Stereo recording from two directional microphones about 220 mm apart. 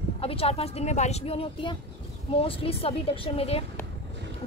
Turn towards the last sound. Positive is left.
turn(degrees=25)  # may be behind; listen again after turning